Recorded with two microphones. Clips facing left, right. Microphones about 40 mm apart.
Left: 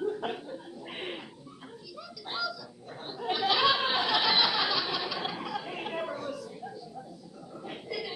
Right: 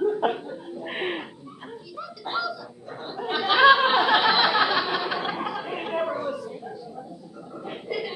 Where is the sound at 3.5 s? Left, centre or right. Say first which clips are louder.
Right 11 dB; right.